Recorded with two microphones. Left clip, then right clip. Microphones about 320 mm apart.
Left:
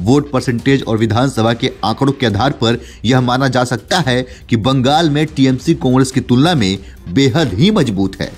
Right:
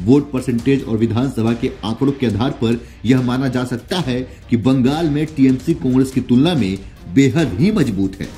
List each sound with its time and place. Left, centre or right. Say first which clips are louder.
0.1 s a man's voice: left 2 dB; left
7.7 s speech: left 3 dB; centre